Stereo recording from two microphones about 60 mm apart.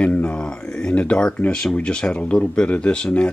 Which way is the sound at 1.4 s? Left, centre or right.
Centre.